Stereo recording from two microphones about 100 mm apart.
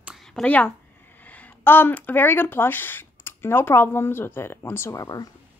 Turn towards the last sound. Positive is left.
turn(degrees=35)  # may be behind; listen again after turning